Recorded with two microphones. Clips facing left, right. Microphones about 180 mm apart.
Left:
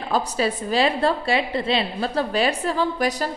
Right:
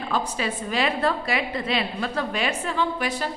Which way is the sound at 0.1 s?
35° left (ahead or behind).